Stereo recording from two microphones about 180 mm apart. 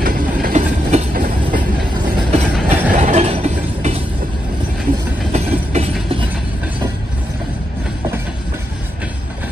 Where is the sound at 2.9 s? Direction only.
40° right (ahead or behind).